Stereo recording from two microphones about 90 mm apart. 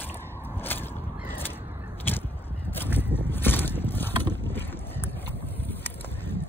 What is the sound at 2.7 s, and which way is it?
Boat, 25° left (ahead or behind).